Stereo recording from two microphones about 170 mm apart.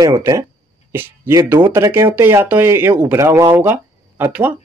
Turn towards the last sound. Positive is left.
turn(degrees=-10)  # may be behind; listen again after turning